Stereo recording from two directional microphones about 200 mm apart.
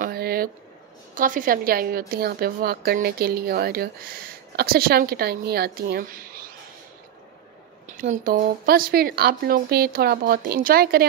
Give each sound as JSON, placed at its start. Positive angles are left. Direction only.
{"t": 0.0, "sound": "a sound", "side_deg": -50}
{"t": 1.1, "sound": "a woman's voice", "side_deg": -40}
{"t": 8.0, "sound": "a woman's voice", "side_deg": -45}